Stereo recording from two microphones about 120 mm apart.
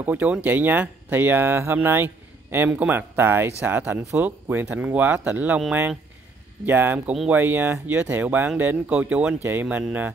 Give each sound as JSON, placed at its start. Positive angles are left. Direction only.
{"t": 0.0, "sound": "speech", "side_deg": -15}